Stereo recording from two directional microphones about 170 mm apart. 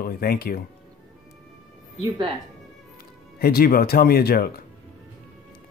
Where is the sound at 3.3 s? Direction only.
65° left (ahead or behind).